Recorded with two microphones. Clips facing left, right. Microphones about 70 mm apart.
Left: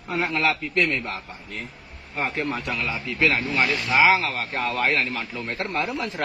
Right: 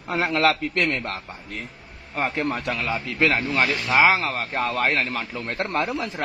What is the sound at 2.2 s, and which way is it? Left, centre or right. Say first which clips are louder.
A man's voice: right 2 dB; right.